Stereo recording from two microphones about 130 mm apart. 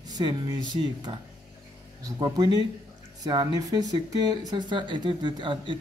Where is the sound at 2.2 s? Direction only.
35° right (ahead or behind).